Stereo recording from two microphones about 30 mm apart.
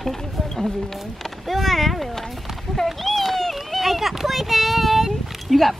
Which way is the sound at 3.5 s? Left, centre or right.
Centre.